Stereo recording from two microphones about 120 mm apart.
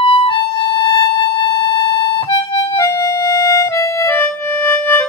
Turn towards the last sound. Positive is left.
turn(degrees=15)  # may be behind; listen again after turning